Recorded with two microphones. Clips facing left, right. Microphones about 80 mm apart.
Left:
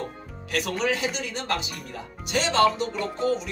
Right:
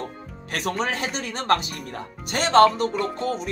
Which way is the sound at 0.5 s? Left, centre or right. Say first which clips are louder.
Even; right.